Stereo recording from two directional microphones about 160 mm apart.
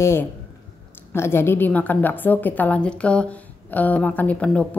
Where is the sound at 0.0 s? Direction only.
15° left (ahead or behind).